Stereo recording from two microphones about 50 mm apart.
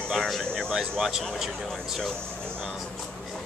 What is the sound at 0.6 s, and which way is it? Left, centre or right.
Speech, centre.